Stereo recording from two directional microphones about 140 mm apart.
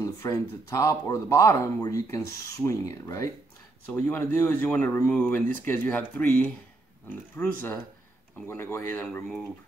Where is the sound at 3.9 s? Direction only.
10° left (ahead or behind).